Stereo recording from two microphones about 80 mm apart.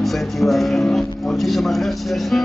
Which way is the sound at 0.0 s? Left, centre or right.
Centre.